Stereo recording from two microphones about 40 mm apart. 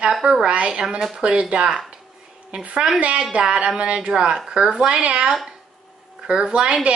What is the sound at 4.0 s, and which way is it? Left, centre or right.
A woman's voice, centre.